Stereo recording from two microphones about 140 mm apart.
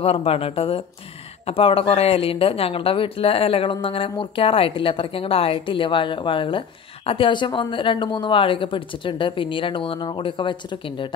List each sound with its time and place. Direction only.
0.0 s speech: 45° left (ahead or behind)